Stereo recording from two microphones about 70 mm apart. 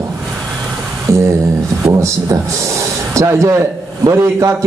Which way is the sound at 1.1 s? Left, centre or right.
Right.